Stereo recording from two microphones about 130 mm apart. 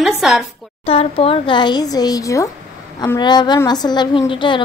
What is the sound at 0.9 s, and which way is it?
A woman's voice, 45° left (ahead or behind).